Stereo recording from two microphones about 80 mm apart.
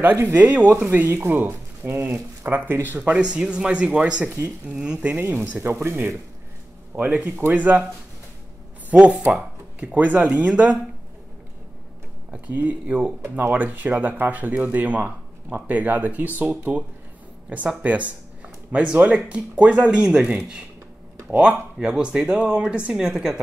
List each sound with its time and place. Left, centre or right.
0.0 s speech: right
0.8 s speech: right; by 5.1 s centre
5.6 s speech: right
8.9 s speech: centre
12.3 s speech: right